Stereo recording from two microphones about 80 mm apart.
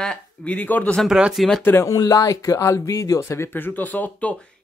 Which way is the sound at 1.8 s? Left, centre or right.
Left.